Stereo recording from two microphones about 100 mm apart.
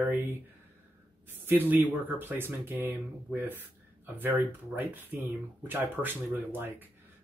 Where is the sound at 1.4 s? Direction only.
20° right (ahead or behind).